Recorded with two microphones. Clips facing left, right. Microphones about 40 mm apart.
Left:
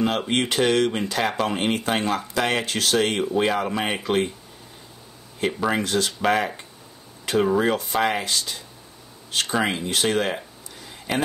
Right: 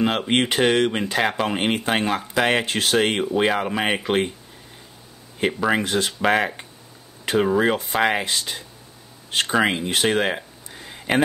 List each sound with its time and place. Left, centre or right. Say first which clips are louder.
0.3 s speech: right 3 dB; right
5.7 s speech: right 2 dB; right